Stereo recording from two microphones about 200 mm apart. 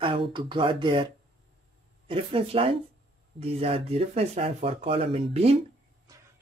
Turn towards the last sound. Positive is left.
turn(degrees=-30)  # may be behind; listen again after turning